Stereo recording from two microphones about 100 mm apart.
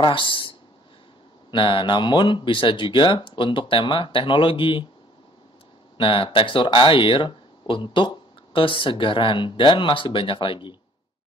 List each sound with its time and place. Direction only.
0.0 s a sound: 55° left (ahead or behind)
1.5 s speech: 55° left (ahead or behind)
5.9 s speech: 60° left (ahead or behind)